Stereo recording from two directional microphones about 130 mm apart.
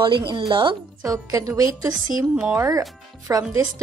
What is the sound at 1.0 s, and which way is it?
A woman's voice, 25° right (ahead or behind).